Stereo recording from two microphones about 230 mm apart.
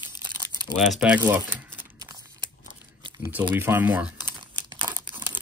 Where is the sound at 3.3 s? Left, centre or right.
Centre.